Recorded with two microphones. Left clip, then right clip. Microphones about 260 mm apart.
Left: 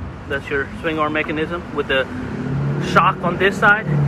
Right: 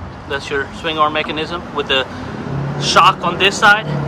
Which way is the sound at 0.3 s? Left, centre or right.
Centre.